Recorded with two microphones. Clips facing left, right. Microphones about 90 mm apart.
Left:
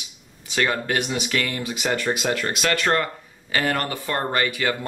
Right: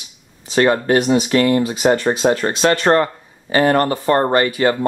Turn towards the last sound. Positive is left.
turn(degrees=-35)  # may be behind; listen again after turning